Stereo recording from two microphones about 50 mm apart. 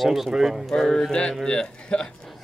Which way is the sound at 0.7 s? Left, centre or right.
Centre.